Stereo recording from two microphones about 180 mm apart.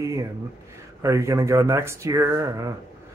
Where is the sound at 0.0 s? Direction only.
15° right (ahead or behind).